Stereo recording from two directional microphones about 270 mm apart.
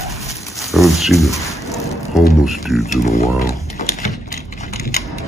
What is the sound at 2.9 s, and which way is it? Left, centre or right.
Speech, left.